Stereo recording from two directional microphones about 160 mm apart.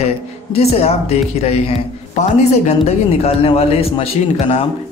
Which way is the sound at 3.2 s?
40° left (ahead or behind).